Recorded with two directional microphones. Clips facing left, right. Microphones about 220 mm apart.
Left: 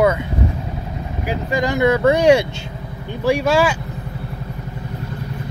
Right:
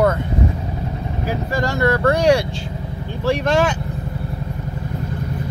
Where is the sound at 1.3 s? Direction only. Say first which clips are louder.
Left 2 dB; 15° left (ahead or behind).